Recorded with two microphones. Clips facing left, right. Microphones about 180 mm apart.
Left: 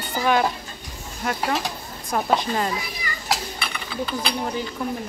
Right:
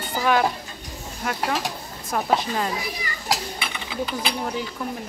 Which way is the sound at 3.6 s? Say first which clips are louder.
Even; 15° right (ahead or behind).